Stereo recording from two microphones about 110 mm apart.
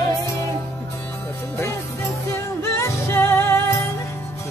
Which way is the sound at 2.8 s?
25° left (ahead or behind).